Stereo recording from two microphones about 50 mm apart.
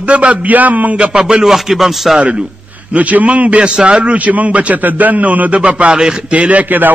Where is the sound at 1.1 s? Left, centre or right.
Centre.